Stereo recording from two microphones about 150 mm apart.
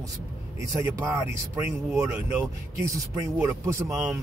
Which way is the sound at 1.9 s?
20° right (ahead or behind).